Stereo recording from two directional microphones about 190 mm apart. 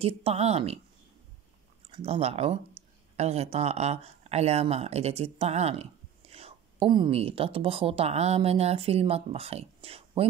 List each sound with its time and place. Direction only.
0.0 s a woman's voice: 30° right (ahead or behind)
1.9 s a woman's voice: 30° right (ahead or behind)